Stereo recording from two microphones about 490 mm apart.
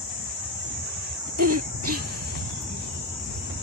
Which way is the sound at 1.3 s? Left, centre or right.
Right.